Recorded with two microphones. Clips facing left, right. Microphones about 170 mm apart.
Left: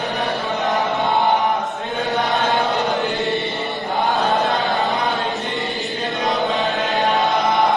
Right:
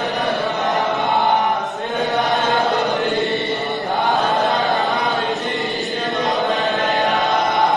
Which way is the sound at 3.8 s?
Centre (ahead or behind).